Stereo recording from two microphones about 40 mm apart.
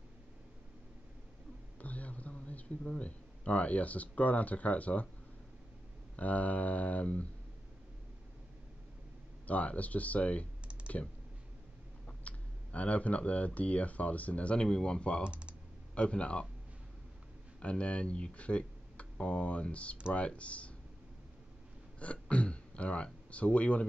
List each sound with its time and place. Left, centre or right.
1.8 s speech: left
6.1 s speech: left
9.5 s speech: left
12.3 s clicking: left
13.6 s speech: left
14.6 s speech: centre
15.2 s speech: right
15.9 s speech: left
17.6 s speech: left
22.0 s speech: left